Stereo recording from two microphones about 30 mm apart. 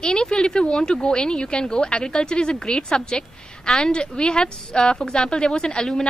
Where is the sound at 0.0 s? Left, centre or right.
Left.